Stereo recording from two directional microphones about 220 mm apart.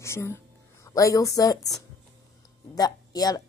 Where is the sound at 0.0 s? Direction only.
10° left (ahead or behind).